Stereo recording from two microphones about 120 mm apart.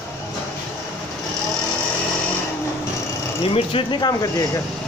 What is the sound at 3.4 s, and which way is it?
Speech, 50° left (ahead or behind).